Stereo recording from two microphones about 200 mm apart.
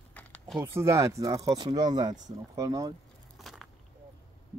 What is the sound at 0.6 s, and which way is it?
Speech, 15° right (ahead or behind).